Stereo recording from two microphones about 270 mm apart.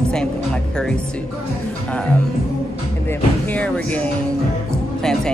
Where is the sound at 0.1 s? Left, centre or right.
Centre.